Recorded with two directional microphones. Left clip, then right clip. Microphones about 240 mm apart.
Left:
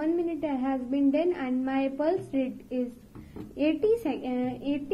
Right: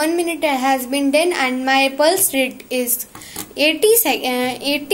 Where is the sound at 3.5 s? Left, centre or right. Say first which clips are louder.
Right 11 dB; right.